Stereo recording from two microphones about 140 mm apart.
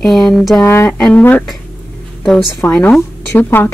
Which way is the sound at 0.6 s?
20° left (ahead or behind).